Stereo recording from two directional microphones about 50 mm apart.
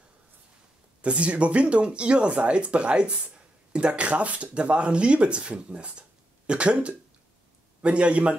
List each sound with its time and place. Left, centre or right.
1.0 s speech: right